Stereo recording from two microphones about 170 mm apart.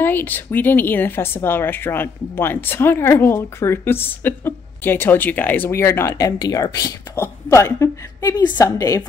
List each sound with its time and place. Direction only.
0.0 s a woman's voice: 10° left (ahead or behind)